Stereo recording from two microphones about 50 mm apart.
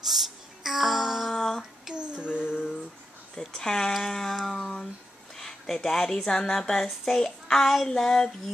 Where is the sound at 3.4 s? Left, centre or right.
Centre.